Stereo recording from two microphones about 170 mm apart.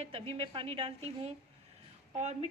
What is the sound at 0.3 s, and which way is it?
A woman's voice, 30° right (ahead or behind).